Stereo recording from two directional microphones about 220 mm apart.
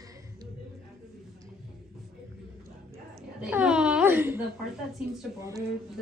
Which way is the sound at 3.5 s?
5° right (ahead or behind).